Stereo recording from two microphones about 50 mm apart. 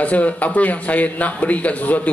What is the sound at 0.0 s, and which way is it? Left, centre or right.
A man's voice, left.